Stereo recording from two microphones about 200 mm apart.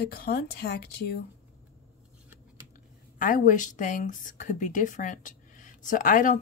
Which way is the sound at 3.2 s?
40° left (ahead or behind).